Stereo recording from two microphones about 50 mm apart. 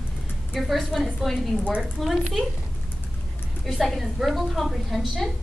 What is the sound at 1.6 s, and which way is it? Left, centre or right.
Speech, right.